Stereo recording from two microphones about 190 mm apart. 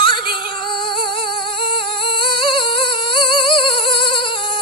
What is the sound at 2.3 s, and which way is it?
Humming, 25° left (ahead or behind).